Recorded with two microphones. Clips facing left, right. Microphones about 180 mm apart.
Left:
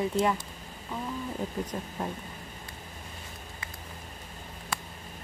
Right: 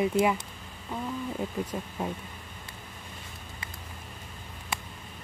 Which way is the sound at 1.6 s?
5° right (ahead or behind).